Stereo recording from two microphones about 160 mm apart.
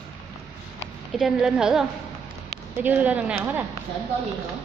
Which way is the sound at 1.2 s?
5° right (ahead or behind).